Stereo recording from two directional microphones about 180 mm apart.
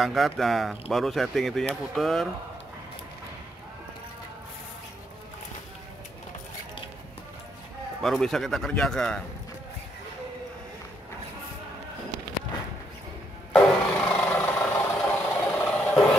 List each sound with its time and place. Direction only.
0.0 s speech: centre (ahead or behind)
8.0 s speech: centre (ahead or behind)
13.5 s vehicle: 5° left (ahead or behind)